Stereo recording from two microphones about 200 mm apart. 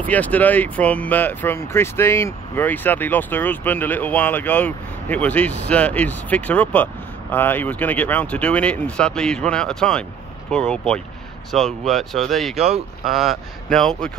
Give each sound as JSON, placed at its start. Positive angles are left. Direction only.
{"t": 0.0, "sound": "speech", "side_deg": 10}
{"t": 12.5, "sound": "speech", "side_deg": -30}
{"t": 13.0, "sound": "speech", "side_deg": 0}